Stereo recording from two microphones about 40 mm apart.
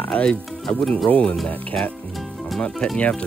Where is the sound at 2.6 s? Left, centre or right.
Centre.